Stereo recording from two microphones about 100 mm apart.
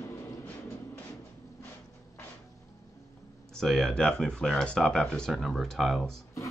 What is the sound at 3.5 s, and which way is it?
Speech, 5° left (ahead or behind).